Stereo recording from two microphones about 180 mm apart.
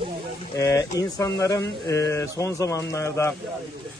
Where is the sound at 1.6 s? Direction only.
70° left (ahead or behind).